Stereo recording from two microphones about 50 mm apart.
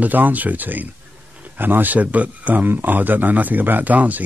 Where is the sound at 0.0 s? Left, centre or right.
Right.